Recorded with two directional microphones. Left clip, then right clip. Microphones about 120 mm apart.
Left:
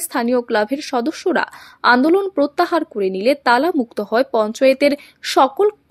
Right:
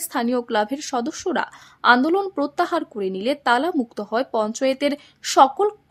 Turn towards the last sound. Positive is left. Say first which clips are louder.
# left 1 dB
turn(degrees=20)  # may be behind; listen again after turning